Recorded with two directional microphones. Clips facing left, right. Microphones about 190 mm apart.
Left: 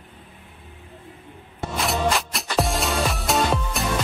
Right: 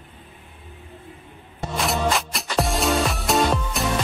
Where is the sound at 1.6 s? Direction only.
Centre (ahead or behind).